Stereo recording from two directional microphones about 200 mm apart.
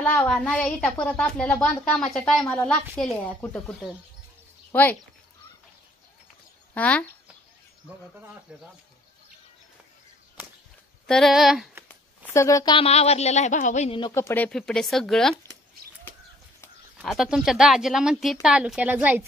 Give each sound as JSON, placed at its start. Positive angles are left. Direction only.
{"t": 0.0, "sound": "speech", "side_deg": 5}
{"t": 6.7, "sound": "speech", "side_deg": 5}
{"t": 8.5, "sound": "speech", "side_deg": -5}
{"t": 11.1, "sound": "speech", "side_deg": 0}
{"t": 12.3, "sound": "a woman's voice", "side_deg": 15}
{"t": 14.1, "sound": "speech", "side_deg": 10}
{"t": 16.6, "sound": "speech", "side_deg": 0}